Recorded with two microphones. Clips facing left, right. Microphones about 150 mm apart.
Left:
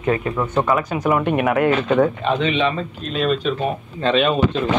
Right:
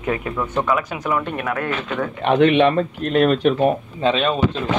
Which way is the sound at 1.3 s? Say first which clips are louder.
Left 7 dB; 15° left (ahead or behind).